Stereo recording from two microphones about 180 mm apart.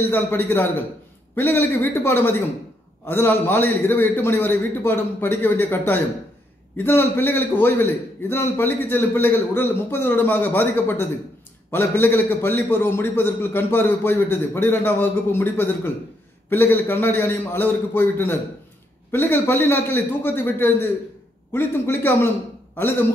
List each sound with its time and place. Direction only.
0.1 s a man's voice: 10° left (ahead or behind)